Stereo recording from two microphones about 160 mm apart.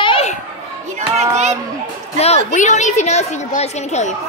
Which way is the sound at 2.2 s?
45° left (ahead or behind).